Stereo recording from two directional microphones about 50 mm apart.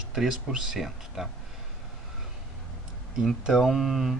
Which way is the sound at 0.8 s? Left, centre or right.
Centre.